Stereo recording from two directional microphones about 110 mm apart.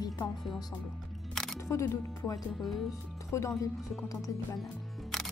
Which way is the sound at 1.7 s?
30° left (ahead or behind).